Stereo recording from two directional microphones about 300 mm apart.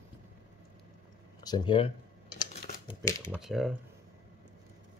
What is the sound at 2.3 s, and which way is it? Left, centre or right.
Typewriter, centre.